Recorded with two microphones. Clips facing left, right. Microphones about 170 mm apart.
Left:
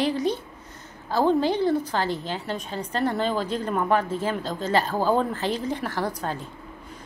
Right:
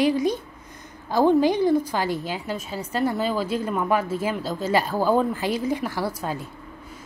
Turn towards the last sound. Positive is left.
turn(degrees=-10)  # may be behind; listen again after turning